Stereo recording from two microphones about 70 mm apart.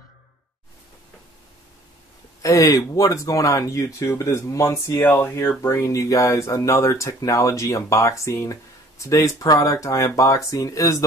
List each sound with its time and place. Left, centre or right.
2.4 s speech: left